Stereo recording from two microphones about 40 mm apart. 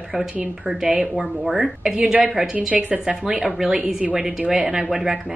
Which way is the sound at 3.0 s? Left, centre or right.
Centre.